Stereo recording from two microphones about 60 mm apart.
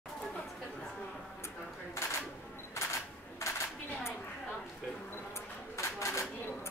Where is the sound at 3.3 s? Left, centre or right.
Left.